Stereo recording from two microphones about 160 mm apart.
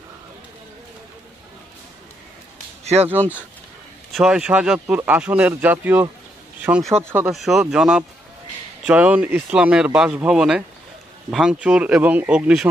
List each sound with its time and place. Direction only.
2.8 s speech: 40° right (ahead or behind)
3.1 s speech: 10° right (ahead or behind)
7.3 s speech: centre (ahead or behind)